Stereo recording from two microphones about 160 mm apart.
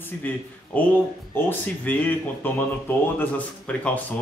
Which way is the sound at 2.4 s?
15° left (ahead or behind).